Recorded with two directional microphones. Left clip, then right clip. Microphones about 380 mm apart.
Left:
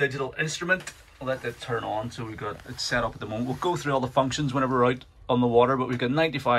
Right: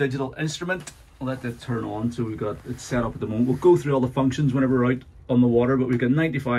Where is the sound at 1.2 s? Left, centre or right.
Centre.